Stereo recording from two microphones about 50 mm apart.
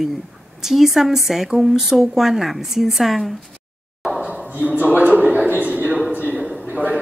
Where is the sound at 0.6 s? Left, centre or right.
Centre.